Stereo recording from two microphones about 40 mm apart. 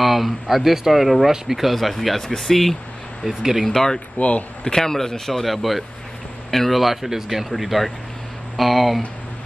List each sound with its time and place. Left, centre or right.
0.0 s speech: centre
3.3 s speech: centre
3.6 s a man's voice: centre
4.2 s speech: left
4.6 s a man's voice: centre